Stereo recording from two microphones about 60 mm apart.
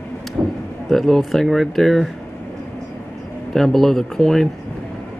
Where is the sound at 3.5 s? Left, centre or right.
Centre.